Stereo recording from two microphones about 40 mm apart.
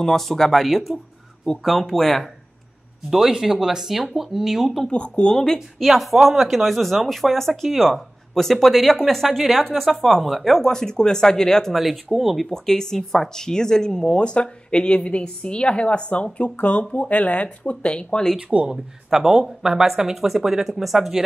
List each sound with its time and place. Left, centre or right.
0.0 s speech: centre
3.1 s speech: centre
4.9 s speech: left
5.8 s speech: centre
11.7 s speech: centre
12.4 s speech: centre; by 18.2 s left
18.5 s speech: right
19.0 s speech: centre